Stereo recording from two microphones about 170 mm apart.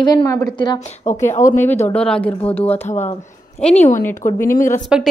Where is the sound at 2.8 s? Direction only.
40° left (ahead or behind).